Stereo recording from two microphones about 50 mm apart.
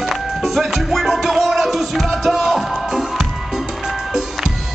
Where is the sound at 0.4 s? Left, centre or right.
Centre.